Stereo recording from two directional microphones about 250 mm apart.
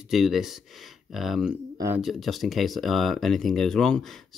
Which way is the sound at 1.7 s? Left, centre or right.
Centre.